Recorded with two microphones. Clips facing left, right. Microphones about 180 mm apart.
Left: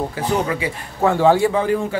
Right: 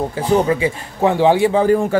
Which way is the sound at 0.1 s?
25° right (ahead or behind).